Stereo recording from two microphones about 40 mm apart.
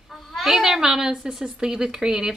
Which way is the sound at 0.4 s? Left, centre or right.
Centre.